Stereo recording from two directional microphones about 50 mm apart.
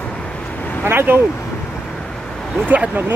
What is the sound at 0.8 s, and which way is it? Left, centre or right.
Speech, right.